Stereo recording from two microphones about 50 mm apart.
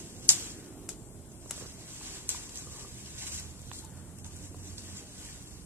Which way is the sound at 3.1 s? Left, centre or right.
Right.